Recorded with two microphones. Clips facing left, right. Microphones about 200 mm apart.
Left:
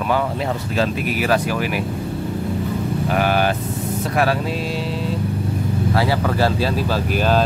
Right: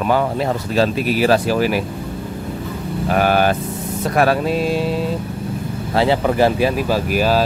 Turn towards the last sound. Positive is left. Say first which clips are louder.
# right 2 dB
turn(degrees=-5)  # may be behind; listen again after turning